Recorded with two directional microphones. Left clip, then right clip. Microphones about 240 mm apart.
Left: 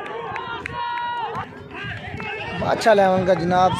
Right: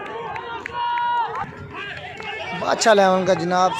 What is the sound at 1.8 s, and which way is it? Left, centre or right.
Run, right.